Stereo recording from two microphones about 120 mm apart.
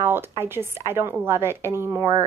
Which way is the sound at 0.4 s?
20° right (ahead or behind).